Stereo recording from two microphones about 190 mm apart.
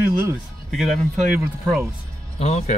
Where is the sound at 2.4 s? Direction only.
35° left (ahead or behind).